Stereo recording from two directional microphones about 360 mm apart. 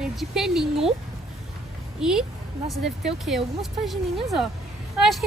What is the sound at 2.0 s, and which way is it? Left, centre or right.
Speech, centre.